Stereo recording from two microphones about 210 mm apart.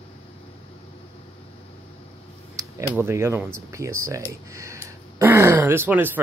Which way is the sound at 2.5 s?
15° right (ahead or behind).